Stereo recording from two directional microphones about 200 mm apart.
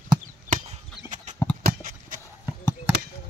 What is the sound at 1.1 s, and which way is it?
Horse, 35° right (ahead or behind).